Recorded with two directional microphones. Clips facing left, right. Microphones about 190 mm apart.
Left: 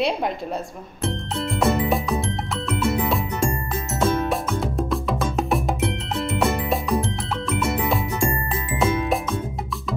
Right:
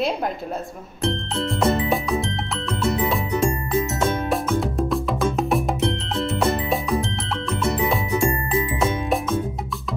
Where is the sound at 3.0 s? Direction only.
Centre (ahead or behind).